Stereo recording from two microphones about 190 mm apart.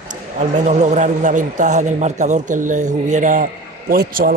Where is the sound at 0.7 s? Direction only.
40° right (ahead or behind).